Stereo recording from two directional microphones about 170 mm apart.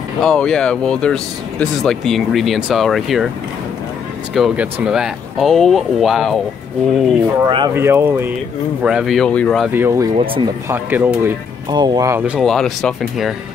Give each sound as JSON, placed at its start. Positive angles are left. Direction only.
{"t": 0.2, "sound": "speech", "side_deg": 5}
{"t": 4.3, "sound": "speech", "side_deg": 0}
{"t": 7.4, "sound": "speech", "side_deg": -25}
{"t": 7.7, "sound": "speech", "side_deg": -15}
{"t": 8.8, "sound": "speech", "side_deg": 0}
{"t": 9.7, "sound": "speech", "side_deg": -15}
{"t": 10.1, "sound": "speech", "side_deg": -30}
{"t": 10.7, "sound": "speech", "side_deg": -10}
{"t": 11.7, "sound": "speech", "side_deg": -25}